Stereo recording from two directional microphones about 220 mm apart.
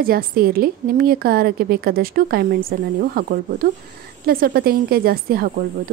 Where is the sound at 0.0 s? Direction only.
40° right (ahead or behind).